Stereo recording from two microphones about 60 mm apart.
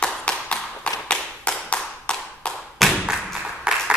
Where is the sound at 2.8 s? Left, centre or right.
Centre.